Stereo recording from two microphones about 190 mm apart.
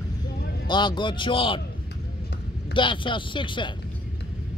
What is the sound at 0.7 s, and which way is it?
Speech, 25° left (ahead or behind).